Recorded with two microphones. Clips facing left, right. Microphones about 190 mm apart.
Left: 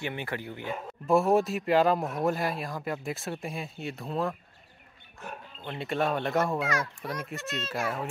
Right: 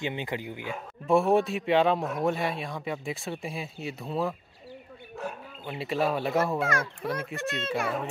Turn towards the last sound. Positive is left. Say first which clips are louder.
# right 3 dB
turn(degrees=-60)  # may be behind; listen again after turning